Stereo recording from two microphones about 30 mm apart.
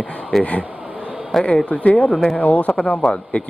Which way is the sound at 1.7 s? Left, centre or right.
Left.